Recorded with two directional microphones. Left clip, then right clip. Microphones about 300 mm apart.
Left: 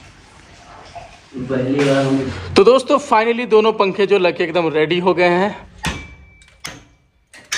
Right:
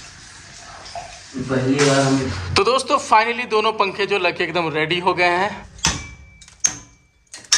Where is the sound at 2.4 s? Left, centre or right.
Centre.